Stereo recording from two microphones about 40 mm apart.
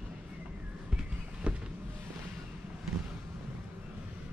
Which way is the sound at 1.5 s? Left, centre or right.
Right.